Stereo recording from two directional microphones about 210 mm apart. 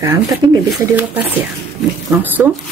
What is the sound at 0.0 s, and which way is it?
Speech, 15° right (ahead or behind).